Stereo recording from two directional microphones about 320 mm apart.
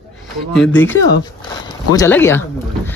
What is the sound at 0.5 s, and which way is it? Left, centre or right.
Speech, centre.